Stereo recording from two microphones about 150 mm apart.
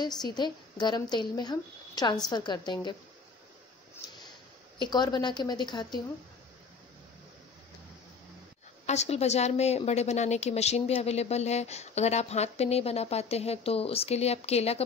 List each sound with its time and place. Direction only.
0.0 s a woman's voice: 25° left (ahead or behind)
4.7 s a woman's voice: 30° left (ahead or behind)
8.8 s a woman's voice: 45° left (ahead or behind)